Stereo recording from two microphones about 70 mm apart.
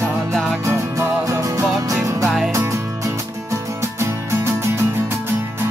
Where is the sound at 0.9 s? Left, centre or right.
Right.